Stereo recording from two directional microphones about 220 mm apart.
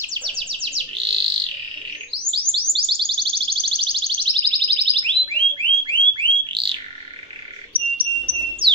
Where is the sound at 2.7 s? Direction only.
25° right (ahead or behind).